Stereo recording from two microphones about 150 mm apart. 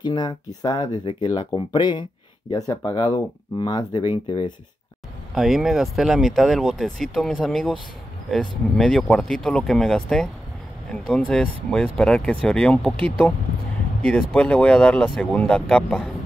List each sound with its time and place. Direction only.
0.0 s speech: 30° left (ahead or behind)
5.3 s speech: centre (ahead or behind)
14.0 s speech: 5° left (ahead or behind)